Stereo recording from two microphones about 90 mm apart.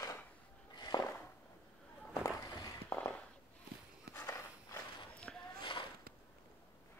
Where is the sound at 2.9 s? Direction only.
15° left (ahead or behind).